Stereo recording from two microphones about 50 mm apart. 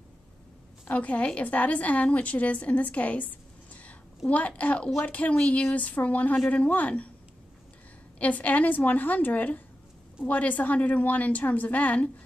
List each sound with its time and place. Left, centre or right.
0.8 s a woman's voice: left
8.2 s a woman's voice: left